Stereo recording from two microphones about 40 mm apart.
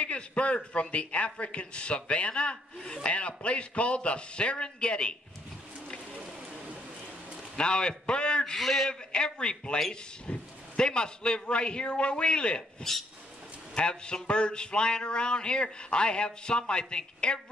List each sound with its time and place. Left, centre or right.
0.0 s a man's voice: left
7.5 s speech: left
8.5 s a man's voice: centre
9.1 s speech: left
13.7 s speech: left